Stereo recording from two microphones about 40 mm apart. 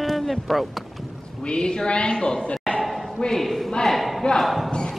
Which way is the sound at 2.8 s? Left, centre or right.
Centre.